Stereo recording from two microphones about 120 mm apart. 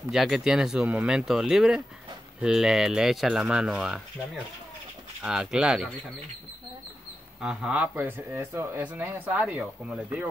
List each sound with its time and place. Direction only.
0.1 s speech: 5° right (ahead or behind)
5.2 s speech: 5° right (ahead or behind)
7.4 s speech: 5° right (ahead or behind)